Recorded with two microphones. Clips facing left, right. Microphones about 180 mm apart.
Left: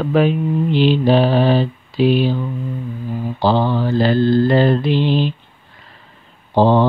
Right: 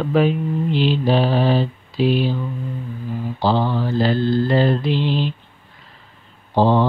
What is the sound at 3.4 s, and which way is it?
Mantra, 65° left (ahead or behind).